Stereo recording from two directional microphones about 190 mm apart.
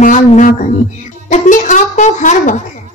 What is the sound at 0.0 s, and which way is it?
A child's voice, 40° left (ahead or behind).